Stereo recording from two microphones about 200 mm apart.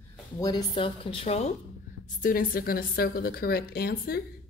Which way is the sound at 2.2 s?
45° left (ahead or behind).